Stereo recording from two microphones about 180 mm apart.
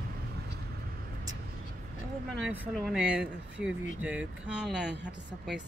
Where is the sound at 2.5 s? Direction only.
5° right (ahead or behind).